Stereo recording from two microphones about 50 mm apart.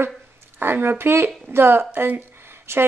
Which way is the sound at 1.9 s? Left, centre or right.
Right.